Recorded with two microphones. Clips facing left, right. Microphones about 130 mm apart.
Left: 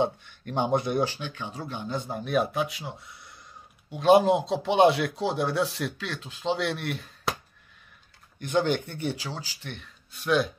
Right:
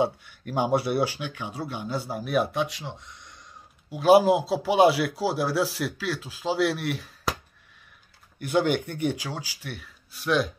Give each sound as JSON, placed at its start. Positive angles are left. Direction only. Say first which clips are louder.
{"t": 0.0, "sound": "speech", "louder": "right 1 dB", "side_deg": -10}
{"t": 8.4, "sound": "speech", "louder": "right 2 dB", "side_deg": -10}